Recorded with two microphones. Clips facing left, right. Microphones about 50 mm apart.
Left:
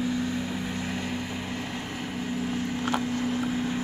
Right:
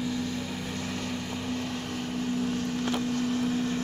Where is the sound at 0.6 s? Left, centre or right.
Centre.